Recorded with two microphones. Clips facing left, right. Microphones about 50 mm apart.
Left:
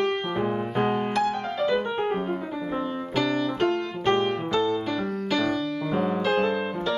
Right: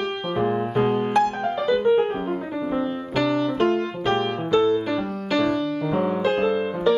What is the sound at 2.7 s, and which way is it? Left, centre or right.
Music, right.